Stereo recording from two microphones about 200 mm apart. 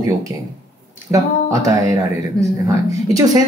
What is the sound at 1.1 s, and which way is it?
Speech, 15° right (ahead or behind).